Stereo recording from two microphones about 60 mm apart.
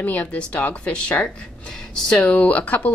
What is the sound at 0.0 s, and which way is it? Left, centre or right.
A woman's voice, left.